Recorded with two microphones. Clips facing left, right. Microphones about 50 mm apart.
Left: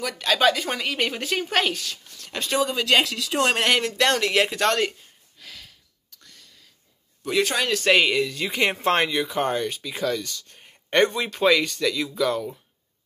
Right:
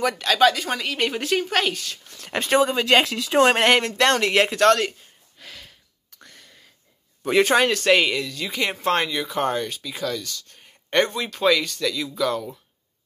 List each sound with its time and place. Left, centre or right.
0.1 s a woman's voice: centre
2.0 s speech: right; by 4.6 s centre
4.6 s a woman's voice: centre
5.4 s a sound: centre
6.1 s a sound: right
7.7 s a woman's voice: centre
8.2 s speech: left
9.2 s a woman's voice: centre